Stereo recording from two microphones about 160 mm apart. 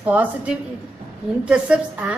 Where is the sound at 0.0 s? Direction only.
10° right (ahead or behind).